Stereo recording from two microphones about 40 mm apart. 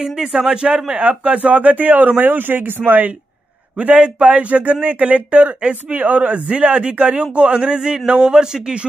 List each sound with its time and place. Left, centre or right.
0.0 s speech: centre
0.9 s speech: right
3.7 s a man's voice: right; by 8.7 s centre